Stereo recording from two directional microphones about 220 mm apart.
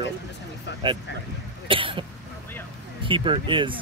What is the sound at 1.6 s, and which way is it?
Cough, 25° right (ahead or behind).